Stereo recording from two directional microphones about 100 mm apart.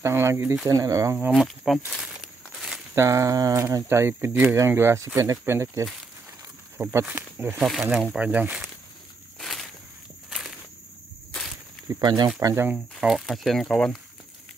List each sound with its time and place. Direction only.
0.0 s speech: 25° right (ahead or behind)
1.6 s speech: centre (ahead or behind)
2.5 s crumpling: centre (ahead or behind)
2.9 s speech: 30° right (ahead or behind)
7.6 s speech: centre (ahead or behind)
8.2 s speech: 15° right (ahead or behind)
9.4 s walk: centre (ahead or behind)
12.0 s speech: 45° right (ahead or behind)
12.4 s speech: 30° right (ahead or behind)
12.7 s speech: 5° right (ahead or behind)